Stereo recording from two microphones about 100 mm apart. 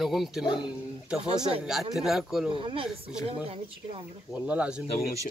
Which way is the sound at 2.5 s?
60° right (ahead or behind).